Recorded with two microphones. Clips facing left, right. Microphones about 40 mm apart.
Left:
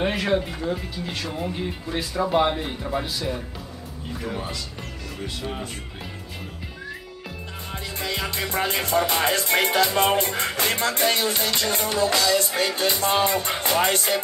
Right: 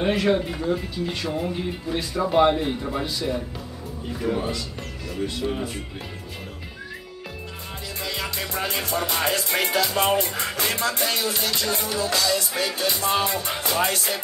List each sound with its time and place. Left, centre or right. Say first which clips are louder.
0.0 s speech: right 2 dB; centre
8.0 s music: left 2 dB; left